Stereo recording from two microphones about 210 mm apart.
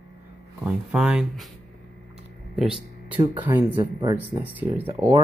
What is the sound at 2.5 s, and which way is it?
Speech, 5° right (ahead or behind).